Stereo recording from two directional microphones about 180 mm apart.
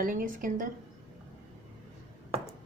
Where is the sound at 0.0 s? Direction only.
50° right (ahead or behind).